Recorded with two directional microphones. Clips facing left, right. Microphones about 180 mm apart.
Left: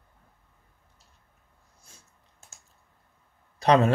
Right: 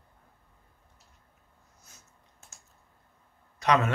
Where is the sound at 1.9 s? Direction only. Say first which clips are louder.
Left 2 dB; 30° left (ahead or behind).